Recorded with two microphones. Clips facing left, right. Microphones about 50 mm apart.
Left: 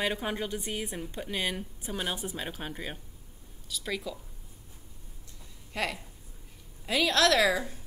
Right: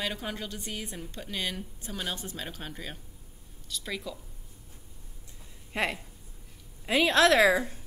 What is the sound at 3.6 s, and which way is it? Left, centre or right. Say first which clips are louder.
Speech: left 2 dB; centre.